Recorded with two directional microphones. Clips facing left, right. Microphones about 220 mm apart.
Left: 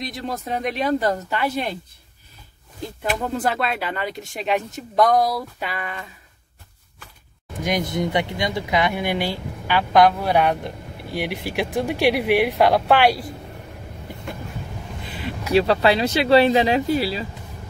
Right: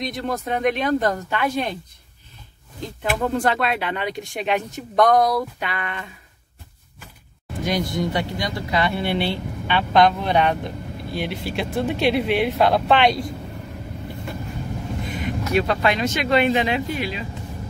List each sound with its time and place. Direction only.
0.0 s speech: centre (ahead or behind)
3.0 s speech: 5° left (ahead or behind)
7.6 s speech: 20° left (ahead or behind)
15.0 s vehicle: 30° left (ahead or behind)
15.5 s speech: 30° left (ahead or behind)